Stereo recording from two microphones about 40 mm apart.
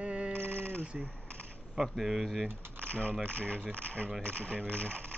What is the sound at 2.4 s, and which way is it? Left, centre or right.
Speech, right.